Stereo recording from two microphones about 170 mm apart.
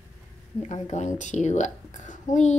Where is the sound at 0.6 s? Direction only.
45° left (ahead or behind).